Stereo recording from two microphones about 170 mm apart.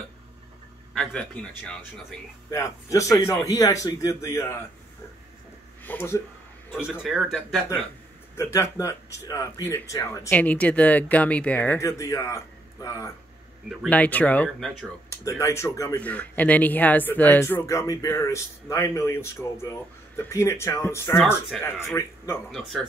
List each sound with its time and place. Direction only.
0.9 s speech: 5° left (ahead or behind)
2.5 s a man's voice: 20° left (ahead or behind)
5.9 s speech: 15° left (ahead or behind)
6.9 s speech: 5° right (ahead or behind)
8.4 s speech: 15° left (ahead or behind)
21.5 s speech: centre (ahead or behind)
21.9 s speech: 15° left (ahead or behind)
22.5 s speech: centre (ahead or behind)